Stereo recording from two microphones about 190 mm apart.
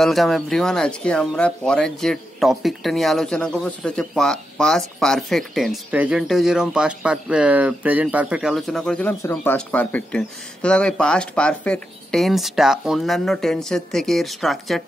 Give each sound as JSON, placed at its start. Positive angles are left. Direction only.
{"t": 0.0, "sound": "speech", "side_deg": 0}